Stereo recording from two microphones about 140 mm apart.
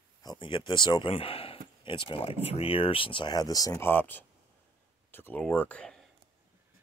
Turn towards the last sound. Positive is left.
turn(degrees=10)  # may be behind; listen again after turning